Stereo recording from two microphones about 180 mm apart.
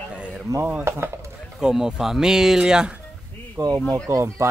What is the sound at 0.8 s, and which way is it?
Speech, 15° right (ahead or behind).